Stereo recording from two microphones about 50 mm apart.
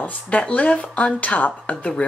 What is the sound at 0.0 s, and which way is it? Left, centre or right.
Speech, left.